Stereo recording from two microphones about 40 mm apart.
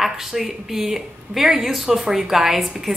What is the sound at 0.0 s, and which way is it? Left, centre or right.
Speech, centre.